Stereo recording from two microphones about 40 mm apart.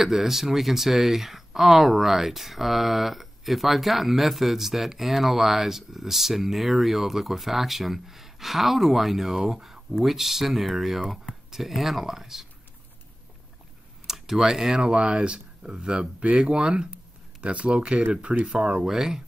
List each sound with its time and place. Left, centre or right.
0.0 s speech: centre
14.0 s a sound: centre
14.4 s speech: centre
14.9 s speech: right
18.8 s speech: centre